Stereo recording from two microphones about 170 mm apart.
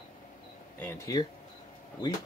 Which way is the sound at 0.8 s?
15° left (ahead or behind).